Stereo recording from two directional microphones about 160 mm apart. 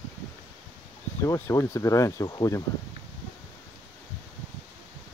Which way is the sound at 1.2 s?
20° left (ahead or behind).